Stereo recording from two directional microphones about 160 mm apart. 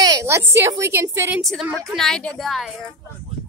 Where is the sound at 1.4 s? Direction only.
Centre (ahead or behind).